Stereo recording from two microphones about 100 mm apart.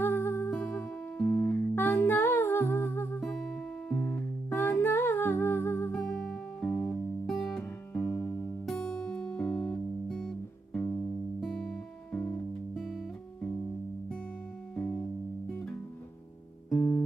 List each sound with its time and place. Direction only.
0.0 s music: 25° left (ahead or behind)
3.2 s music: 5° left (ahead or behind)
7.2 s music: centre (ahead or behind)
7.9 s music: 20° left (ahead or behind)
8.6 s music: 10° left (ahead or behind)
14.8 s music: 20° left (ahead or behind)
16.7 s guitar: 20° left (ahead or behind)